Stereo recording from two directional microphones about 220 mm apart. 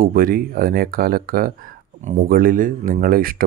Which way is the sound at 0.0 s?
40° right (ahead or behind).